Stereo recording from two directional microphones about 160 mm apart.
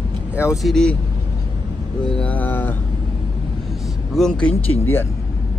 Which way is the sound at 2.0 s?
5° left (ahead or behind).